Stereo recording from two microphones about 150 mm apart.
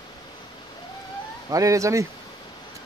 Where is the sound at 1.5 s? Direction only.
20° right (ahead or behind).